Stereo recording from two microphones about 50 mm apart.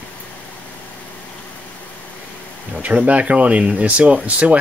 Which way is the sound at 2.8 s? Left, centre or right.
Right.